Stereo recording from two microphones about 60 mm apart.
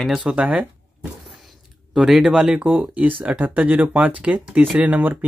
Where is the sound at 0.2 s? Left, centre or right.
Right.